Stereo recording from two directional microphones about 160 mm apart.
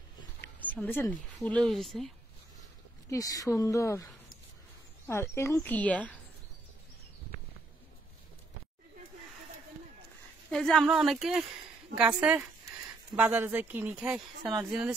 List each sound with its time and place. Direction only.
0.7 s speech: 10° left (ahead or behind)
3.1 s a woman's voice: 20° left (ahead or behind)
10.5 s speech: 5° left (ahead or behind)